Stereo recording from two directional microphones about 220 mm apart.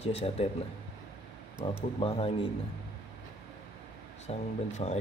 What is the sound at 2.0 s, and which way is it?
Speech, 25° left (ahead or behind).